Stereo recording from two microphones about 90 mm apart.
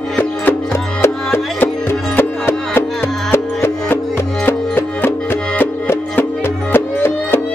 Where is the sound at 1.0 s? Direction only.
25° left (ahead or behind).